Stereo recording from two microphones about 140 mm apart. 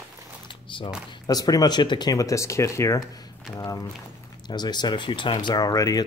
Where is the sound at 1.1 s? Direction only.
30° left (ahead or behind).